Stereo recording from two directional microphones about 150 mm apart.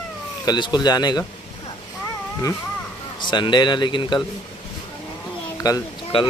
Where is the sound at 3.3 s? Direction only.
30° left (ahead or behind).